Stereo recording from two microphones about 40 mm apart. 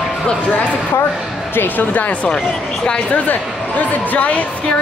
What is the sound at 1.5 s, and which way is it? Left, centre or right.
Speech, left.